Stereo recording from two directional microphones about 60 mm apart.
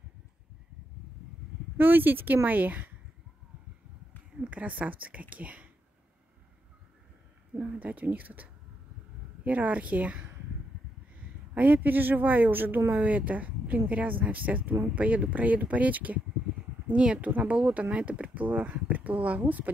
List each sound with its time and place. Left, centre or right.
1.8 s speech: right
4.5 s speech: right
7.5 s a woman's voice: right
11.5 s speech: right